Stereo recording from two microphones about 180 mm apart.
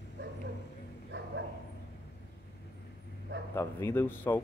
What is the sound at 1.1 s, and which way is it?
Bow-wow, 75° right (ahead or behind).